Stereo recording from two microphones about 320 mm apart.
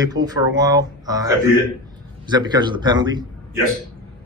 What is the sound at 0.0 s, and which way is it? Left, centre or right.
Speech, centre.